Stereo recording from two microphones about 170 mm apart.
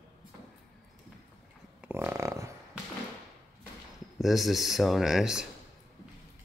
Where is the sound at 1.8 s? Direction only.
15° right (ahead or behind).